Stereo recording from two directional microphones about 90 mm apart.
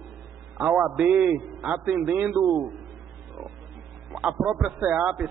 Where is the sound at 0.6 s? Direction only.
20° right (ahead or behind).